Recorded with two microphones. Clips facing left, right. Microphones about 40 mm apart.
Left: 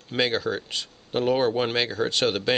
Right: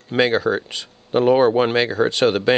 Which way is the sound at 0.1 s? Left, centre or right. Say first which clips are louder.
Right 7 dB; centre.